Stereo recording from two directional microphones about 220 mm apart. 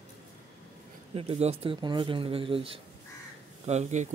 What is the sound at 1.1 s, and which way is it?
Speech, 25° right (ahead or behind).